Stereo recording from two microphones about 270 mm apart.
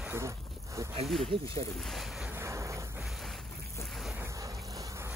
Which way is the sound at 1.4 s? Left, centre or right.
Centre.